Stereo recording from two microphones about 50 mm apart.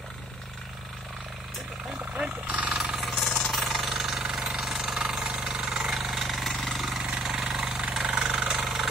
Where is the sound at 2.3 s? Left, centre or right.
Right.